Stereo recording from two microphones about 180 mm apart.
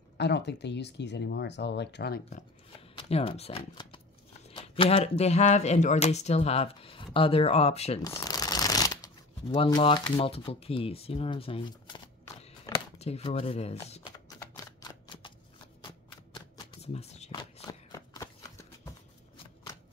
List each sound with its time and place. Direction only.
0.2 s speech: 70° left (ahead or behind); by 2.4 s 55° left (ahead or behind)
3.1 s speech: 35° left (ahead or behind)
8.0 s shuffling cards: 20° left (ahead or behind)
9.7 s speech: 25° left (ahead or behind)
14.0 s shuffling cards: 20° left (ahead or behind)
16.8 s shuffling cards: 35° left (ahead or behind)
17.9 s a sound: 20° left (ahead or behind)